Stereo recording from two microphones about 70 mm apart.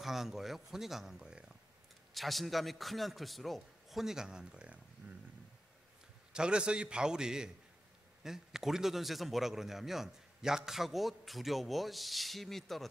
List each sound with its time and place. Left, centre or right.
0.0 s a man's voice: centre
2.1 s a man's voice: centre; by 5.2 s right
6.3 s a man's voice: centre